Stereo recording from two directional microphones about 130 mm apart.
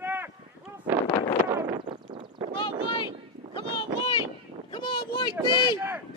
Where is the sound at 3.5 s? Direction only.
40° left (ahead or behind).